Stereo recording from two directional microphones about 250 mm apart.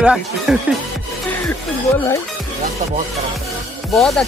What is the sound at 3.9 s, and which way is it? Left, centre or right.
Speech, centre.